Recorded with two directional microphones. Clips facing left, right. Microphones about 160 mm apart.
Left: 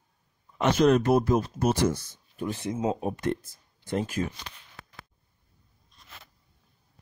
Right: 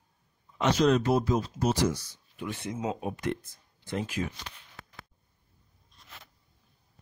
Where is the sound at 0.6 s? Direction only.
55° left (ahead or behind).